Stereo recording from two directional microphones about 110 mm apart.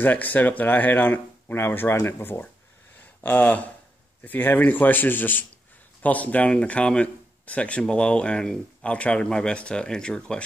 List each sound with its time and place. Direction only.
0.0 s speech: 15° left (ahead or behind)